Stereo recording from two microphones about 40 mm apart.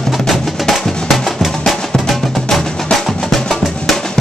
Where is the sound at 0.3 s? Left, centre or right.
Centre.